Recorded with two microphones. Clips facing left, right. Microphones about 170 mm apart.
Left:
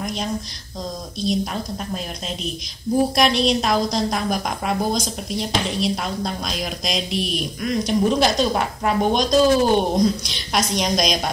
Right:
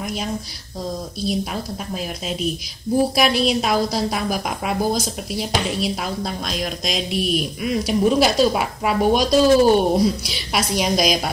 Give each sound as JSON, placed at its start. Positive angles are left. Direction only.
{"t": 0.0, "sound": "a woman's voice", "side_deg": -5}
{"t": 3.2, "sound": "a woman's voice", "side_deg": -5}